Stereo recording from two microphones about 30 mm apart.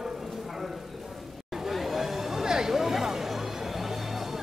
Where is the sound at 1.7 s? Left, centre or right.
Centre.